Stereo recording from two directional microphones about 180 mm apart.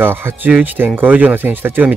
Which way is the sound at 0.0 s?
10° right (ahead or behind).